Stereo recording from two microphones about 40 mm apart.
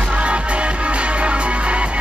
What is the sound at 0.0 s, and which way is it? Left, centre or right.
Music, right.